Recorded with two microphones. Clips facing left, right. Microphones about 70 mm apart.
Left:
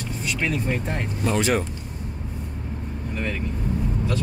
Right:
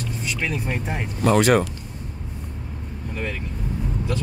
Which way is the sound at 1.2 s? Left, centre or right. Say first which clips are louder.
Right 6 dB; right.